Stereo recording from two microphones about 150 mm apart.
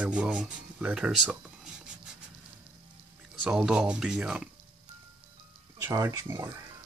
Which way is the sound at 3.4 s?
5° right (ahead or behind).